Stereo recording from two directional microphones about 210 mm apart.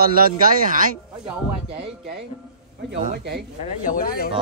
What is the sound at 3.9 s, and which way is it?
Speech, 45° left (ahead or behind).